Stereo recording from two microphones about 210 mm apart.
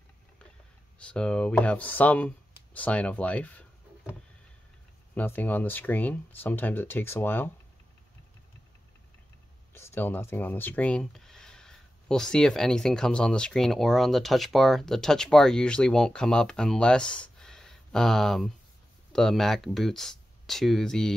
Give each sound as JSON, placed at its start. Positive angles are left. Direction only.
{"t": 1.0, "sound": "speech", "side_deg": 5}
{"t": 5.1, "sound": "speech", "side_deg": 10}
{"t": 9.8, "sound": "speech", "side_deg": 10}